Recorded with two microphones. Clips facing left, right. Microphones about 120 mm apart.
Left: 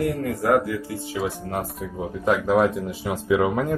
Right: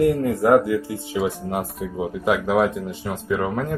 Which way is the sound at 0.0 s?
25° right (ahead or behind).